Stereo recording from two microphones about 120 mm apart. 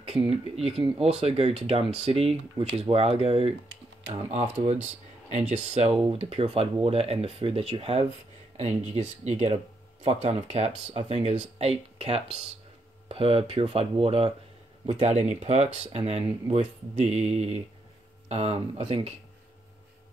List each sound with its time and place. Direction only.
0.0 s speech: 60° right (ahead or behind)
5.5 s speech: 85° right
6.1 s speech: 55° right (ahead or behind)
8.5 s speech: 65° right (ahead or behind)
15.0 s speech: 65° right (ahead or behind)